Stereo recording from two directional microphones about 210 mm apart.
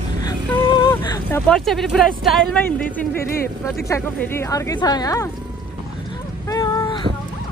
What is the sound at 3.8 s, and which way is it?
Speech, 10° left (ahead or behind).